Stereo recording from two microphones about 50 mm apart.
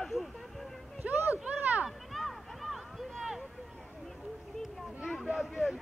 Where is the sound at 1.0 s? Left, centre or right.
Right.